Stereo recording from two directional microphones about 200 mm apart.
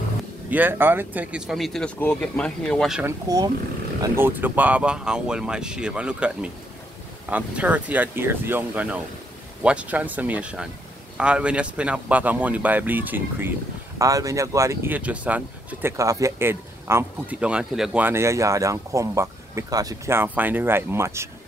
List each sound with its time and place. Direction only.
0.5 s speech: 10° right (ahead or behind)
3.0 s speech: 15° right (ahead or behind)